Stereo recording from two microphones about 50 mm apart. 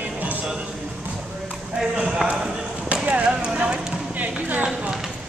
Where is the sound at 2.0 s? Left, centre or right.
Centre.